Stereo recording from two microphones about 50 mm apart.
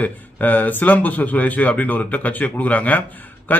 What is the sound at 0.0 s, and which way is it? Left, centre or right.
A man's voice, left.